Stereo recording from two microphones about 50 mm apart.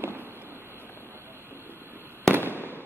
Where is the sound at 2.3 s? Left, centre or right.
Right.